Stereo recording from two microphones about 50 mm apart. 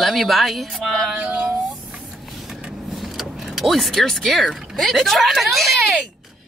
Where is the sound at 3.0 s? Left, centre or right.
Centre.